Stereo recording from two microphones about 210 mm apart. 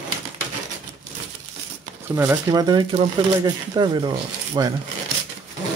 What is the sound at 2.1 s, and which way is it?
Speech, 10° right (ahead or behind).